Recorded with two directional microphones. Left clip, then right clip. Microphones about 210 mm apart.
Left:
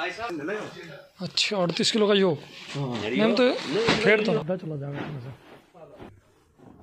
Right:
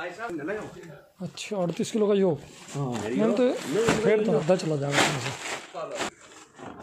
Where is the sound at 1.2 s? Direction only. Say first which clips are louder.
Left 6 dB; centre (ahead or behind).